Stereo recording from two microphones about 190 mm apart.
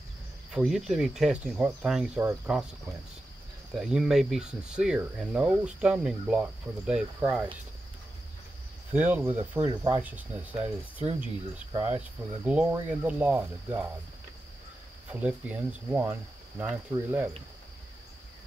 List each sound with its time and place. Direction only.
0.5 s speech: centre (ahead or behind)
3.7 s speech: 5° right (ahead or behind)
8.9 s speech: 10° right (ahead or behind)
9.7 s speech: 25° right (ahead or behind)
10.0 s speech: 10° right (ahead or behind)
15.0 s speech: 10° right (ahead or behind)